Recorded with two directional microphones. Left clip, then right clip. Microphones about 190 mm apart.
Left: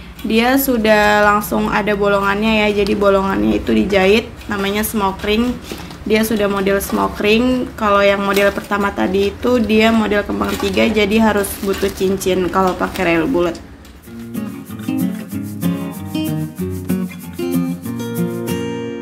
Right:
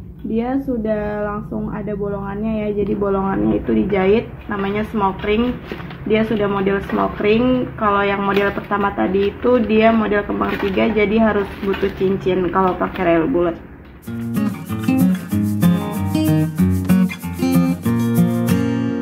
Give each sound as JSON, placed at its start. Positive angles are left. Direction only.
{"t": 0.3, "sound": "speech", "side_deg": 15}
{"t": 14.3, "sound": "music", "side_deg": 0}